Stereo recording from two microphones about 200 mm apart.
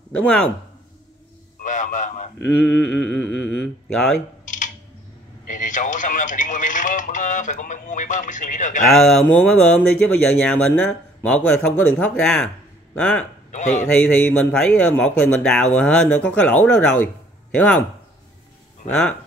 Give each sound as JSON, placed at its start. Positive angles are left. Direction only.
{"t": 0.2, "sound": "speech", "side_deg": 5}
{"t": 1.6, "sound": "a sound", "side_deg": 40}
{"t": 2.3, "sound": "mantra", "side_deg": 10}
{"t": 5.5, "sound": "telephone", "side_deg": 40}
{"t": 8.8, "sound": "speech", "side_deg": 0}
{"t": 13.5, "sound": "speech", "side_deg": 35}
{"t": 13.8, "sound": "speech", "side_deg": 5}
{"t": 17.0, "sound": "a sound", "side_deg": 5}
{"t": 18.9, "sound": "speech", "side_deg": 5}